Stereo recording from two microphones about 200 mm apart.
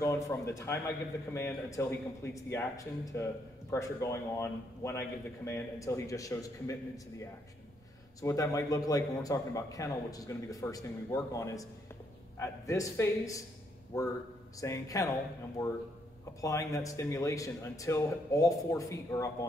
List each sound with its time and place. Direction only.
0.0 s a man's voice: 15° left (ahead or behind)
14.6 s a man's voice: 15° left (ahead or behind)